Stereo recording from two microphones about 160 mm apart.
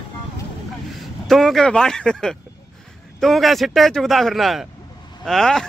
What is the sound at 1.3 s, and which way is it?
Speech, centre (ahead or behind).